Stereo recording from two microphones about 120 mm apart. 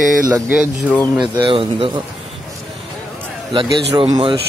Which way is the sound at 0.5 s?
Centre (ahead or behind).